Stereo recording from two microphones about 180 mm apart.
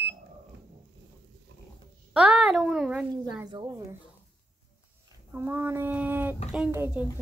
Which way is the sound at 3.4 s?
20° right (ahead or behind).